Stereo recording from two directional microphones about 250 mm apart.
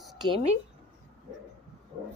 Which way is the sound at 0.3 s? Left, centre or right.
Right.